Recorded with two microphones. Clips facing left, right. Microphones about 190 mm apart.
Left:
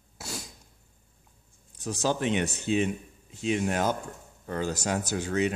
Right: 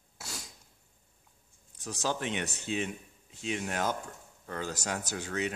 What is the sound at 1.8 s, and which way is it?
Speech, 25° left (ahead or behind).